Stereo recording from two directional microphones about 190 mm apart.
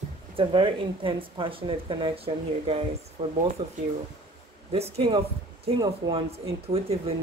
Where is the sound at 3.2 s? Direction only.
30° right (ahead or behind).